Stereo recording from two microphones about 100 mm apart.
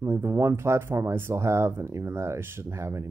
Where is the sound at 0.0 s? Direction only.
25° right (ahead or behind).